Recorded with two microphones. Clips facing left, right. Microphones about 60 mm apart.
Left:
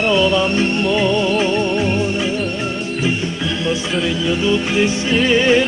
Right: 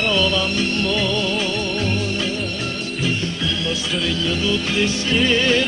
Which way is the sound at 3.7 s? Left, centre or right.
Left.